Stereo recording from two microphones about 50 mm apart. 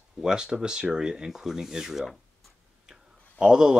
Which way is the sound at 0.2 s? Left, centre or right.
Centre.